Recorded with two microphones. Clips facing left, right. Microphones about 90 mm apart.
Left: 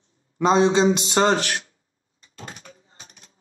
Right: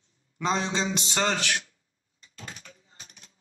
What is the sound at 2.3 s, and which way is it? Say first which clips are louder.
Door: left 4 dB; 40° left (ahead or behind).